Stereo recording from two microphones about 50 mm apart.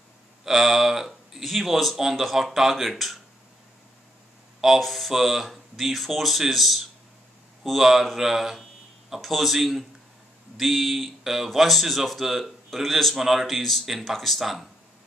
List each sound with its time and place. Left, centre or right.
0.5 s speech: centre
4.6 s speech: centre